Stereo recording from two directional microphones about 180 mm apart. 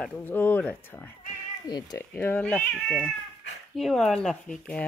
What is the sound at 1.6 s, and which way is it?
Speech, 20° left (ahead or behind).